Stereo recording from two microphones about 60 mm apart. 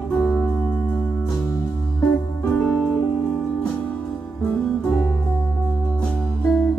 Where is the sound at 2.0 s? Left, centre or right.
Left.